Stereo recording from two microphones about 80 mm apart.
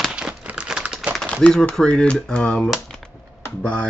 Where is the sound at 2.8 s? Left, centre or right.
Centre.